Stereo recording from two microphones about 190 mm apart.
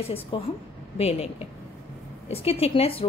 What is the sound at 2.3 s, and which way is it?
Speech, 30° left (ahead or behind).